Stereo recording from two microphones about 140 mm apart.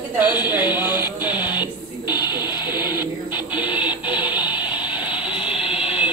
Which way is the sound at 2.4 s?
30° left (ahead or behind).